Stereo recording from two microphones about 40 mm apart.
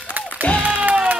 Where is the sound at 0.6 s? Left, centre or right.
Right.